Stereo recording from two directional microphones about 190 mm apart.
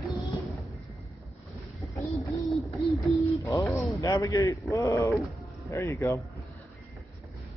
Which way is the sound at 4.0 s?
20° left (ahead or behind).